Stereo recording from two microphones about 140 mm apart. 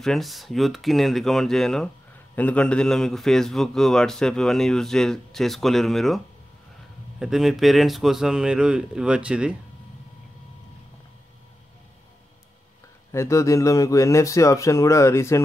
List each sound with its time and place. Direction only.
0.0 s a man's voice: centre (ahead or behind)
13.1 s speech: 20° left (ahead or behind)